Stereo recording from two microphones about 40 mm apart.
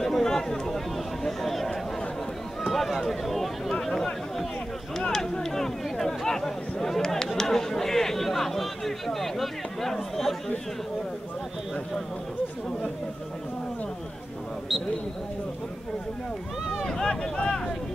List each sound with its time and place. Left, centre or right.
0.0 s chatter: centre
2.6 s speech: centre
5.1 s speech: centre
16.8 s speech: centre